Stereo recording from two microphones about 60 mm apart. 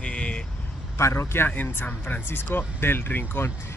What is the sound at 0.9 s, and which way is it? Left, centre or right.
Speech, left.